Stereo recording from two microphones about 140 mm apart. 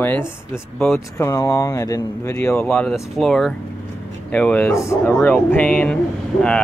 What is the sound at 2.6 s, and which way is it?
Speech, 5° left (ahead or behind).